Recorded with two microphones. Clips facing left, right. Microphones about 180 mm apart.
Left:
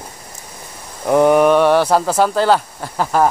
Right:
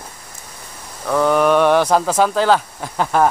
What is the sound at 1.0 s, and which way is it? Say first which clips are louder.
Speech: left 4 dB; 20° left (ahead or behind).